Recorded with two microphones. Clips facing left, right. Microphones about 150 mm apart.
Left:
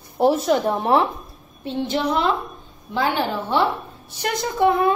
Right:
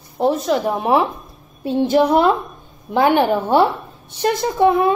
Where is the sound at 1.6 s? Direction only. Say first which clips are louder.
Right 7 dB; 50° right (ahead or behind).